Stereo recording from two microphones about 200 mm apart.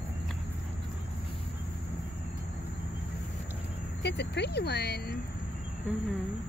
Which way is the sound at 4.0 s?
60° left (ahead or behind).